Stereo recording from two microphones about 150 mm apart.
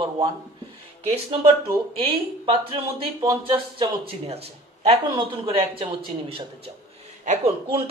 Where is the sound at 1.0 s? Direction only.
40° right (ahead or behind).